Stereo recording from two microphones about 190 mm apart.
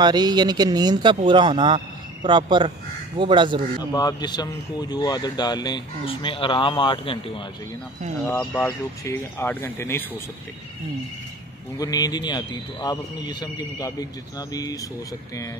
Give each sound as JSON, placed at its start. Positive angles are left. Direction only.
{"t": 0.0, "sound": "speech", "side_deg": -20}
{"t": 3.9, "sound": "speech", "side_deg": 20}
{"t": 8.3, "sound": "speech", "side_deg": 10}
{"t": 11.8, "sound": "speech", "side_deg": 20}